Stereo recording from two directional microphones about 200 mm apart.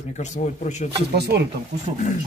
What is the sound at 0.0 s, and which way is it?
Speech, 35° left (ahead or behind).